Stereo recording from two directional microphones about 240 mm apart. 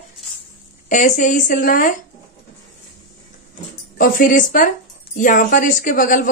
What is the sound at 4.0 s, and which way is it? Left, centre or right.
A woman's voice, left.